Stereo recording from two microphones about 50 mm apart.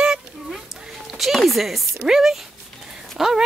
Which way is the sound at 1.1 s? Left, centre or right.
Centre.